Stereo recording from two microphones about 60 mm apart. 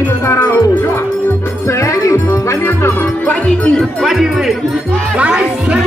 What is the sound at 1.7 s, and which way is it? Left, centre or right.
Music, left.